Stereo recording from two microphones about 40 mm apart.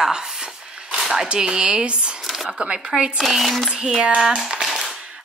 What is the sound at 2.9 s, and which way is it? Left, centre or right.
Speech, centre.